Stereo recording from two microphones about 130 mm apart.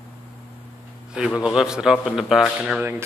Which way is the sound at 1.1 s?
5° right (ahead or behind).